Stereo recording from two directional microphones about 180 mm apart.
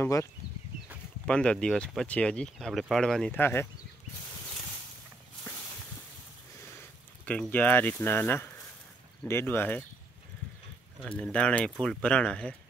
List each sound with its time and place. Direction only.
0.0 s speech: 15° left (ahead or behind)
7.2 s speech: 10° left (ahead or behind)
11.1 s speech: 5° left (ahead or behind)